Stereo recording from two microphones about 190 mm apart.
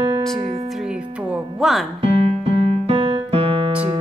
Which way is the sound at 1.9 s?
30° right (ahead or behind).